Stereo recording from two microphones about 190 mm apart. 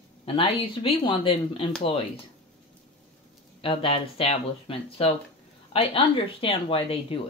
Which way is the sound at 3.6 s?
30° left (ahead or behind).